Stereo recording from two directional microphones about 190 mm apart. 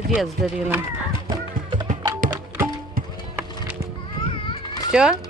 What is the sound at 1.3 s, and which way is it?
Music, 20° right (ahead or behind).